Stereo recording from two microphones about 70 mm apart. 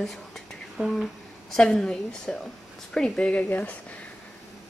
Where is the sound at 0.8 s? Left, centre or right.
Right.